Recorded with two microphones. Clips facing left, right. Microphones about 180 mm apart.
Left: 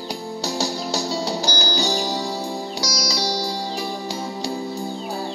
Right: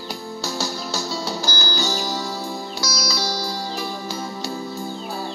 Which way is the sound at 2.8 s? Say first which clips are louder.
Even; 35° left (ahead or behind).